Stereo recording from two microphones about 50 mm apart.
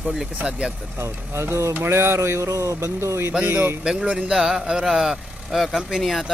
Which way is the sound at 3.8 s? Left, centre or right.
Centre.